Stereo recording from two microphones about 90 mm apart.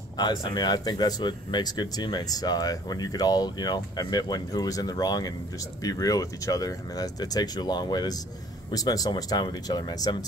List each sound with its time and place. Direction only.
0.2 s speech: 50° left (ahead or behind)